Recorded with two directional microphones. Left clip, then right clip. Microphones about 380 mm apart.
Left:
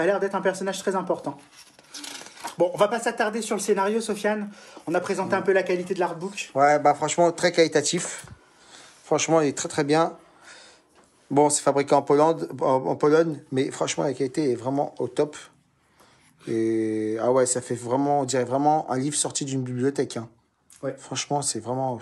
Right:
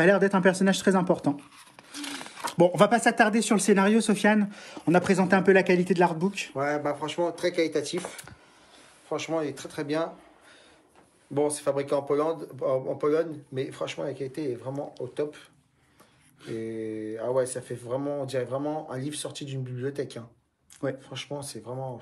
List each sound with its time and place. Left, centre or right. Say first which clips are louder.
0.0 s speech: right 2 dB; right
2.4 s speech: right 1 dB; right
6.5 s a man's voice: left 12 dB; centre
16.5 s speech: left 9 dB; centre